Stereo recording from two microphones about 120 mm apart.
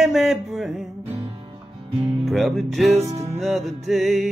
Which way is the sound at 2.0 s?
45° right (ahead or behind).